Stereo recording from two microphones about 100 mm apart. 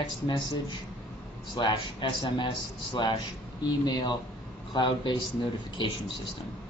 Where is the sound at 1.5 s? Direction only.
50° left (ahead or behind).